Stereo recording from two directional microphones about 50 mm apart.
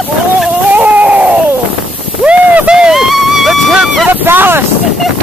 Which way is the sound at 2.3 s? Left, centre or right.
Right.